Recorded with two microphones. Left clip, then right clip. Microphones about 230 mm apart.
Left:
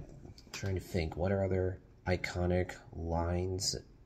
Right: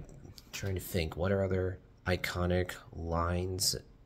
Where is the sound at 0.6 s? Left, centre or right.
Right.